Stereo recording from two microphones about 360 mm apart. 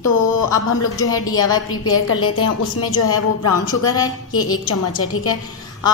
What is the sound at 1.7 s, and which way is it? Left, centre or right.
A woman's voice, left.